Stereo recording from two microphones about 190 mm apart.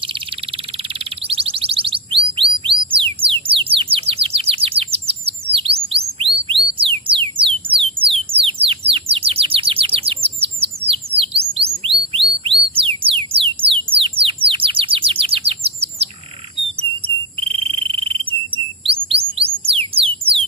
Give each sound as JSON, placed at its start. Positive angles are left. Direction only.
{"t": 0.0, "sound": "a sound", "side_deg": -25}
{"t": 7.8, "sound": "bird", "side_deg": -30}
{"t": 12.1, "sound": "music", "side_deg": -30}
{"t": 13.9, "sound": "bird", "side_deg": -30}
{"t": 17.6, "sound": "bird", "side_deg": -25}
{"t": 19.9, "sound": "music", "side_deg": -30}